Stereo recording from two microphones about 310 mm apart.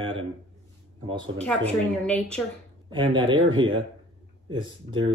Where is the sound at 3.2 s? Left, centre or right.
Centre.